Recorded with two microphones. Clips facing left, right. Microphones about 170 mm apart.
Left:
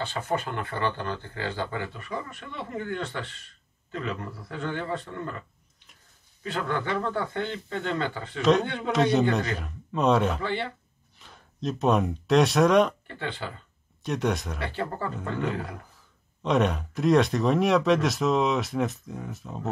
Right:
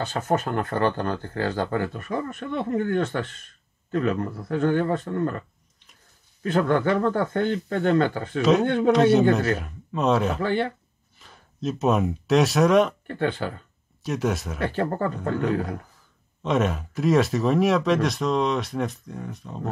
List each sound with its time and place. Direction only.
0.0 s speech: 45° right (ahead or behind)
6.4 s speech: 50° right (ahead or behind)
8.4 s speech: 5° right (ahead or behind)
8.6 s speech: 50° right (ahead or behind)
8.9 s speech: 5° right (ahead or behind)
10.4 s speech: 50° right (ahead or behind)
11.1 s speech: centre (ahead or behind)
13.0 s speech: 50° right (ahead or behind)
14.0 s speech: 5° right (ahead or behind)
14.6 s speech: 50° right (ahead or behind)
16.4 s speech: centre (ahead or behind)